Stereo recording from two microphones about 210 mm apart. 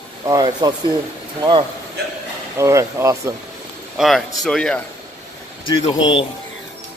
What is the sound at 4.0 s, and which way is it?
Speech, centre (ahead or behind).